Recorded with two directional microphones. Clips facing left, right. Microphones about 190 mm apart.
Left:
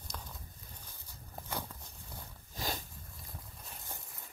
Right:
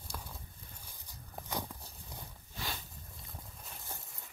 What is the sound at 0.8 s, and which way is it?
Walk, 15° right (ahead or behind).